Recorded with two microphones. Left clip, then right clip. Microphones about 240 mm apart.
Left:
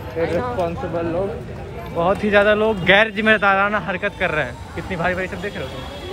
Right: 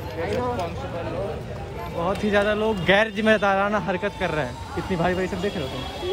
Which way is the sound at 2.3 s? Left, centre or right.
Centre.